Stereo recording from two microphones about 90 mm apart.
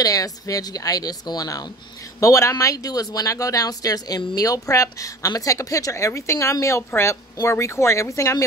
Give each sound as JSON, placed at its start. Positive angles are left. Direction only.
{"t": 0.0, "sound": "speech", "side_deg": 40}